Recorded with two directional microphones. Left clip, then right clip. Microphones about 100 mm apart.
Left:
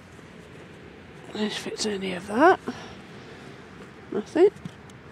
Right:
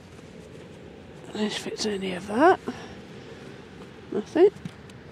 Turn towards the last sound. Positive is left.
turn(degrees=-20)  # may be behind; listen again after turning